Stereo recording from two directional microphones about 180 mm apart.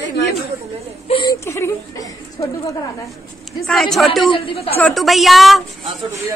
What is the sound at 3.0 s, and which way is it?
Speech, centre (ahead or behind).